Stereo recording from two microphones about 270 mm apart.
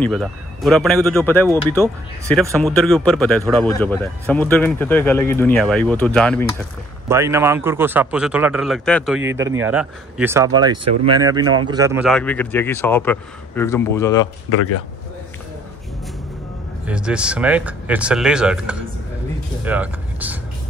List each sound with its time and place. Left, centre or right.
0.0 s a man's voice: centre
7.1 s speech: centre
11.4 s speech: right
11.7 s speech: centre
12.1 s a man's voice: centre
16.8 s speech: centre